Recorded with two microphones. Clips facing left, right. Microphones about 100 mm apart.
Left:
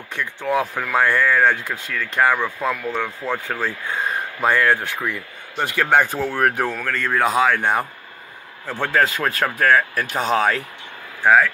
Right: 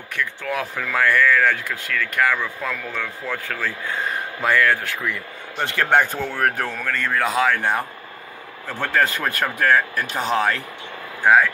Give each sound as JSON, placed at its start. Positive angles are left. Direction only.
{"t": 0.1, "sound": "speech", "side_deg": 20}
{"t": 5.6, "sound": "speech", "side_deg": 10}
{"t": 8.9, "sound": "speech", "side_deg": 5}